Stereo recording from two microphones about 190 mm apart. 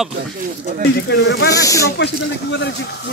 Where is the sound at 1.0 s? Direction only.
60° left (ahead or behind).